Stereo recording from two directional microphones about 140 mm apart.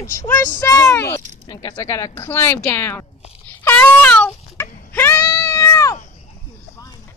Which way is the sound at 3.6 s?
15° left (ahead or behind).